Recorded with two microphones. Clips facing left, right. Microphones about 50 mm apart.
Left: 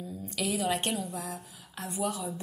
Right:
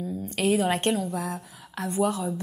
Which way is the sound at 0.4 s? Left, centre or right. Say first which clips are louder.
Right 6 dB; right.